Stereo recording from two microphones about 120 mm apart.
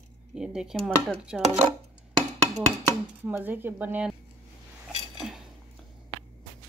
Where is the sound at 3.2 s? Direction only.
15° right (ahead or behind).